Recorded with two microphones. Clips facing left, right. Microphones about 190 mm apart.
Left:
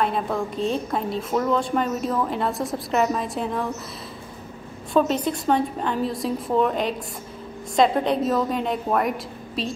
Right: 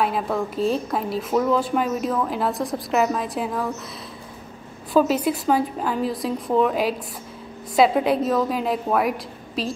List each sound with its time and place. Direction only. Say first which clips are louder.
0.0 s a woman's voice: right 1 dB; 5° right (ahead or behind)
4.9 s a woman's voice: right 2 dB; 5° right (ahead or behind)